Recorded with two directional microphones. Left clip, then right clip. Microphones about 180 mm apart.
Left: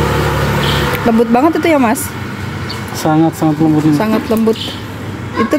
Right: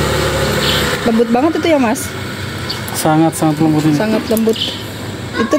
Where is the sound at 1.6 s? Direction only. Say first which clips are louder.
Left 2 dB; 10° left (ahead or behind).